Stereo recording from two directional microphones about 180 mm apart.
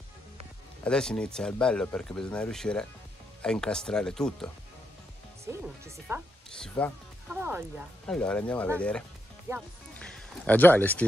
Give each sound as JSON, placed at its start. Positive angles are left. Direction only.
{"t": 0.8, "sound": "speech", "side_deg": 5}
{"t": 5.4, "sound": "speech", "side_deg": -15}
{"t": 6.8, "sound": "speech", "side_deg": 5}
{"t": 7.3, "sound": "speech", "side_deg": -10}
{"t": 8.1, "sound": "speech", "side_deg": 5}
{"t": 9.5, "sound": "speech", "side_deg": -15}
{"t": 9.9, "sound": "speech", "side_deg": 5}